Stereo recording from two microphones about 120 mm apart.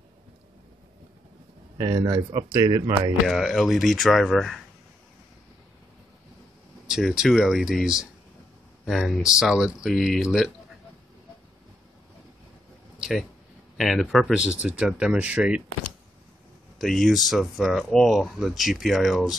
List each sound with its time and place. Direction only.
1.8 s speech: 35° right (ahead or behind)
2.5 s speech: 25° right (ahead or behind)
3.3 s speech: centre (ahead or behind)
6.9 s speech: 5° right (ahead or behind)
13.7 s speech: centre (ahead or behind)
16.7 s speech: centre (ahead or behind)